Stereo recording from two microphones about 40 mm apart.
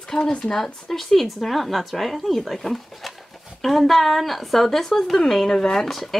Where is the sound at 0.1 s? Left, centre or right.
Left.